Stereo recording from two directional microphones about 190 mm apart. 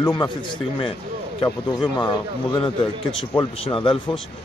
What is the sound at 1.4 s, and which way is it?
Speech, 25° left (ahead or behind).